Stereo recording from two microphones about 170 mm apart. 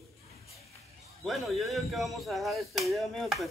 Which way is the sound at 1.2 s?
Centre (ahead or behind).